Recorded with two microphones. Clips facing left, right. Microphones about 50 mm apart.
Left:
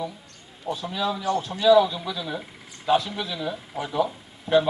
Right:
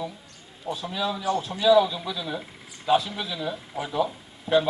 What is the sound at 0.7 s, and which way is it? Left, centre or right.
A man's voice, centre.